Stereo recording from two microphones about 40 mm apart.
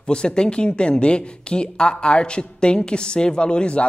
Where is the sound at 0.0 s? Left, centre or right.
Left.